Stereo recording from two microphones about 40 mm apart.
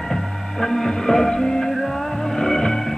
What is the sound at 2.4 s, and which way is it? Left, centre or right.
Music, centre.